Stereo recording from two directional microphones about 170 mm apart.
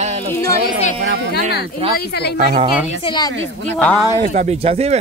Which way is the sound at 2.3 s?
50° right (ahead or behind).